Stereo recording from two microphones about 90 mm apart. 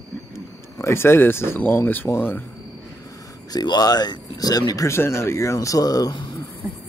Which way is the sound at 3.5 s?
50° left (ahead or behind).